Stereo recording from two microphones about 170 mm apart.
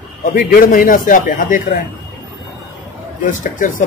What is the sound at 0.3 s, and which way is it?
Speech, 60° left (ahead or behind).